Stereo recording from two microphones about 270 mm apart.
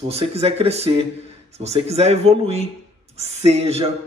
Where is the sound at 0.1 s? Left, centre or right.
Right.